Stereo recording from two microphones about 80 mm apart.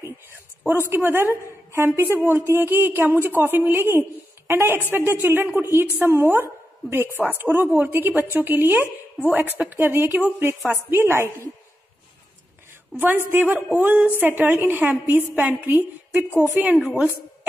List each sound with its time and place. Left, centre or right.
0.0 s a sound: right
0.8 s a woman's voice: right
12.9 s speech: right